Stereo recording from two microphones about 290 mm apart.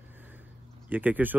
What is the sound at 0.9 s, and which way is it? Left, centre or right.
Speech, centre.